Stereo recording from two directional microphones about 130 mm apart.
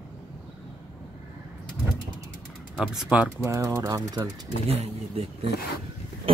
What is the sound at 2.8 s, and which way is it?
Speech, 5° right (ahead or behind).